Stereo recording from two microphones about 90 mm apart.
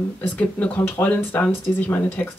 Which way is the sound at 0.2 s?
20° left (ahead or behind).